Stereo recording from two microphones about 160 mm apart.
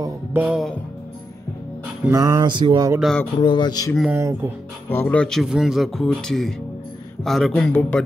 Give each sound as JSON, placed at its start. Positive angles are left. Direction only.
{"t": 0.0, "sound": "music", "side_deg": -10}
{"t": 2.0, "sound": "speech", "side_deg": -20}
{"t": 3.0, "sound": "speech", "side_deg": 0}
{"t": 3.3, "sound": "speech", "side_deg": 30}
{"t": 4.1, "sound": "speech", "side_deg": -15}
{"t": 4.8, "sound": "speech", "side_deg": 10}